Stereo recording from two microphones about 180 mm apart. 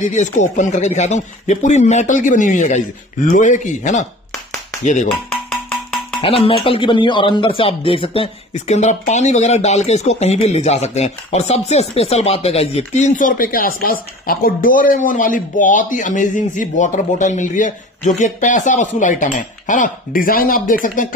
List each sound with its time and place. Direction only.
0.0 s speech: 45° left (ahead or behind)
6.2 s speech: 30° left (ahead or behind); by 21.1 s 50° left (ahead or behind)